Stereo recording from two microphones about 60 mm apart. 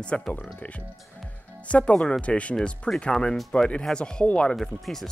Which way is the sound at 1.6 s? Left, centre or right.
Left.